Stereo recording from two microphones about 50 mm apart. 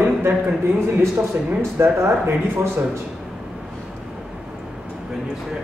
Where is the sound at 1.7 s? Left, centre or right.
Right.